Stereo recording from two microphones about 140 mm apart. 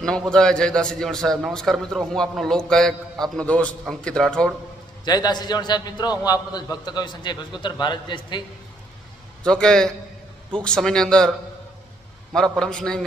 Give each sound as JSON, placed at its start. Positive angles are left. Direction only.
{"t": 0.3, "sound": "a man's voice", "side_deg": 5}
{"t": 5.0, "sound": "a man's voice", "side_deg": 30}
{"t": 9.4, "sound": "a man's voice", "side_deg": 5}
{"t": 12.4, "sound": "a man's voice", "side_deg": 5}